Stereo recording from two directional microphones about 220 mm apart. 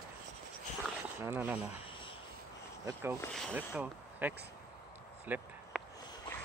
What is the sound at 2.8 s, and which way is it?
Speech, 10° right (ahead or behind).